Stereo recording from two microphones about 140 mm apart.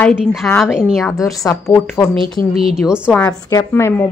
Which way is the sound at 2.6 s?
5° right (ahead or behind).